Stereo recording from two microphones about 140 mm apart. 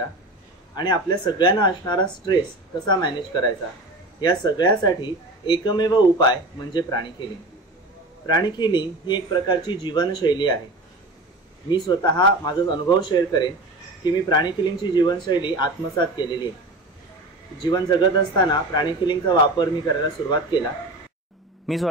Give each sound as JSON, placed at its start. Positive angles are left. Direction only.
{"t": 0.7, "sound": "speech", "side_deg": 30}
{"t": 8.3, "sound": "speech", "side_deg": 30}
{"t": 11.7, "sound": "speech", "side_deg": 30}
{"t": 17.6, "sound": "speech", "side_deg": 30}
{"t": 21.7, "sound": "a man's voice", "side_deg": 0}